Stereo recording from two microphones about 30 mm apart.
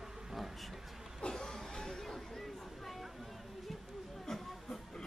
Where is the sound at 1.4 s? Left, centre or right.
Centre.